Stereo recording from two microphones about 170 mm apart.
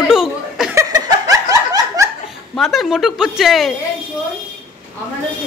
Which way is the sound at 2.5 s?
Centre (ahead or behind).